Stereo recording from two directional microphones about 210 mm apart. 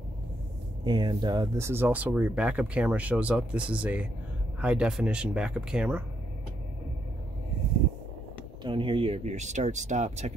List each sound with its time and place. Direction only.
0.8 s speech: 20° right (ahead or behind)
8.6 s speech: 25° right (ahead or behind)